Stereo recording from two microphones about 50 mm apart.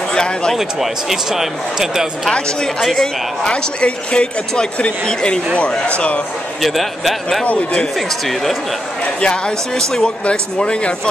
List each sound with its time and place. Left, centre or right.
0.1 s speech: centre
0.6 s speech: centre
2.3 s speech: centre
2.8 s speech: centre
3.4 s speech: left
6.6 s speech: centre
9.0 s speech: centre